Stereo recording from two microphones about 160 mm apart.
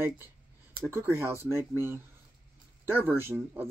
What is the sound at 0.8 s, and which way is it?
Speech, 15° right (ahead or behind).